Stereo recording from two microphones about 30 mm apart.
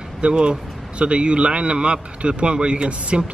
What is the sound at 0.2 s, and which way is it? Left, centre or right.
Speech, right.